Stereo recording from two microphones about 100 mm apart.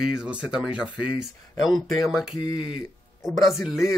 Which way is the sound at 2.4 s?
55° left (ahead or behind).